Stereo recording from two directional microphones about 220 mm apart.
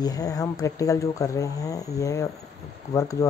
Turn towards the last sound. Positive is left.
turn(degrees=15)  # may be behind; listen again after turning